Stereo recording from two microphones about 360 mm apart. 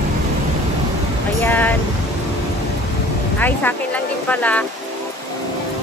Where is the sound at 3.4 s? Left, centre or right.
Centre.